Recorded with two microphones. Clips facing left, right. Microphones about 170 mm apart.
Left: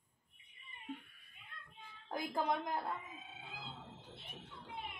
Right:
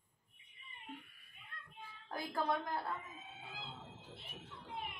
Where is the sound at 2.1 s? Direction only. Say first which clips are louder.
Left 1 dB; 15° left (ahead or behind).